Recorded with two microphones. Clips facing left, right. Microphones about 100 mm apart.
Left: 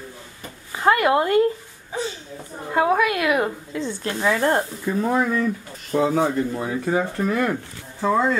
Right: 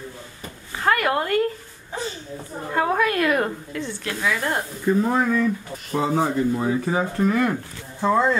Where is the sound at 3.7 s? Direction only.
30° left (ahead or behind).